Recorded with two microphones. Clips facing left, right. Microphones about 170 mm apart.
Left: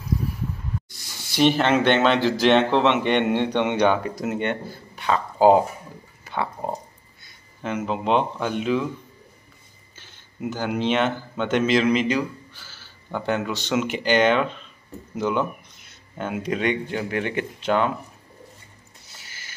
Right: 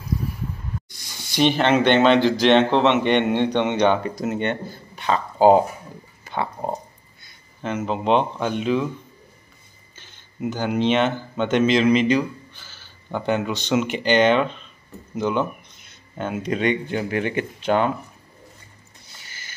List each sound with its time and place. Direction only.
0.8 s a sound: 5° left (ahead or behind)
2.0 s a man's voice: 5° left (ahead or behind)
6.2 s a sound: centre (ahead or behind)
7.8 s speech: 5° left (ahead or behind)
9.9 s a man's voice: 5° left (ahead or behind)
19.0 s music: 5° left (ahead or behind)